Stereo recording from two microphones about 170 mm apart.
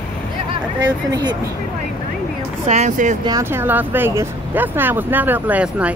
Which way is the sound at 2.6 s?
45° right (ahead or behind).